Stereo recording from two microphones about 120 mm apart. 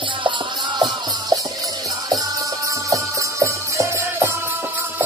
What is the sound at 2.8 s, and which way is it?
Music, 25° right (ahead or behind).